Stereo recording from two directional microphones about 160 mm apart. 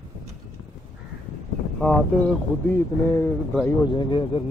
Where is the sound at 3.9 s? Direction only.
30° left (ahead or behind).